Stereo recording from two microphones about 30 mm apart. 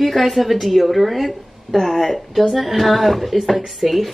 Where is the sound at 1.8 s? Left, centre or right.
Centre.